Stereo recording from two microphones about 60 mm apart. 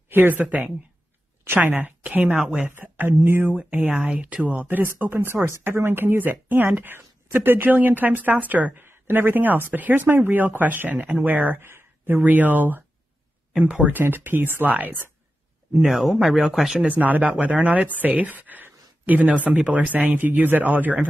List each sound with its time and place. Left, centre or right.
0.1 s speech: right
2.4 s speech: centre
2.7 s speech: right
13.5 s speech: centre
13.8 s speech: right
15.9 s speech: centre
16.7 s speech: right